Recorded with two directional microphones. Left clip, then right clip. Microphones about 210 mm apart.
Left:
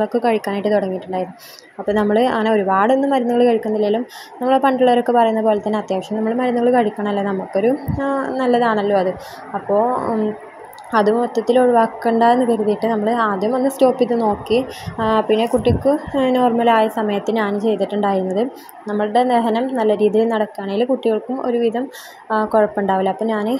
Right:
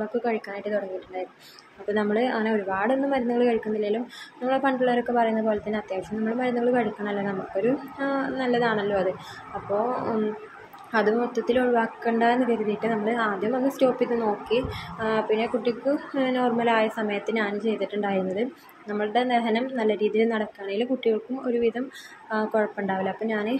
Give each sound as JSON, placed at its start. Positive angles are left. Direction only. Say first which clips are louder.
{"t": 0.2, "sound": "speech", "louder": "left 10 dB", "side_deg": 35}
{"t": 1.9, "sound": "a woman's voice", "louder": "left 8 dB", "side_deg": 30}
{"t": 10.9, "sound": "a woman's voice", "louder": "left 7 dB", "side_deg": 25}